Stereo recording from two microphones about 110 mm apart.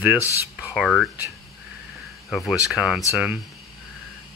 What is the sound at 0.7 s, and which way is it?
Speech, 5° left (ahead or behind).